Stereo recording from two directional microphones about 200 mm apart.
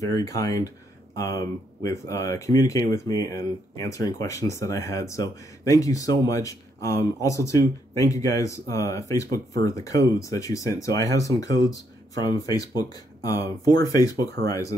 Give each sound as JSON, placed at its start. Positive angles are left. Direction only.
{"t": 0.0, "sound": "speech", "side_deg": 15}